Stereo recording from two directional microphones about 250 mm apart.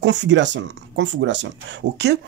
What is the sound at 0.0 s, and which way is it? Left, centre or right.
Speech, right.